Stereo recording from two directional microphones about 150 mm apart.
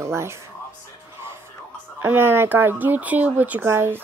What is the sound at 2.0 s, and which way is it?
Speech, 15° right (ahead or behind).